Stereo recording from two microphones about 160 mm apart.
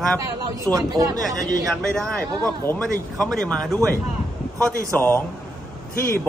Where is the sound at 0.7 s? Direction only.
20° right (ahead or behind).